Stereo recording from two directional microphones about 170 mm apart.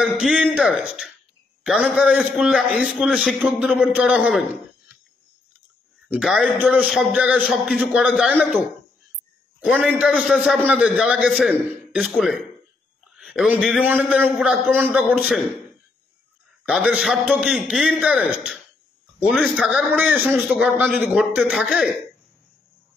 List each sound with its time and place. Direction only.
0.0 s a man's voice: 5° right (ahead or behind)
6.0 s a man's voice: 5° right (ahead or behind)
9.6 s a man's voice: centre (ahead or behind)
16.6 s a man's voice: 5° right (ahead or behind)
19.1 s a man's voice: 5° left (ahead or behind)
19.4 s a man's voice: 5° right (ahead or behind)